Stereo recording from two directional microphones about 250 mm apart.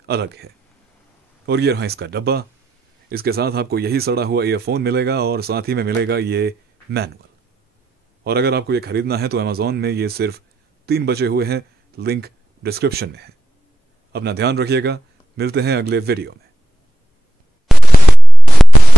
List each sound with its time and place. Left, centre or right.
0.0 s speech: right
8.2 s a man's voice: right